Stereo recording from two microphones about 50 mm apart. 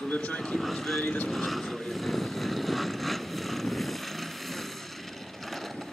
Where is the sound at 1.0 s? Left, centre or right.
Left.